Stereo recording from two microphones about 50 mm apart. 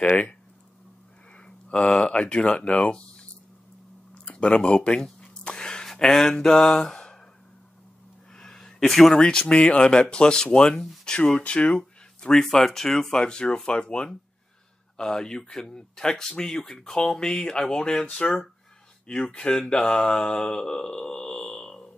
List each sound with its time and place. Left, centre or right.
0.0 s speech: left
1.3 s a sound: left
5.9 s speech: centre
8.4 s a sound: centre
9.1 s mantra: centre
11.4 s speech: left
12.4 s mantra: centre
13.2 s speech: centre
15.0 s mantra: centre
19.0 s mantra: centre